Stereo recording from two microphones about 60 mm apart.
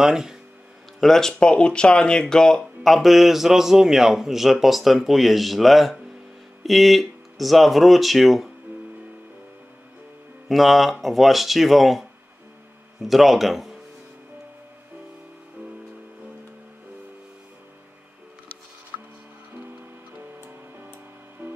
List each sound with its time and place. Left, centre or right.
0.0 s speech: centre
1.0 s speech: centre
10.5 s speech: centre